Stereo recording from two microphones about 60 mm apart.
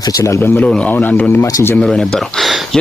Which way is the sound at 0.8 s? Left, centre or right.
Left.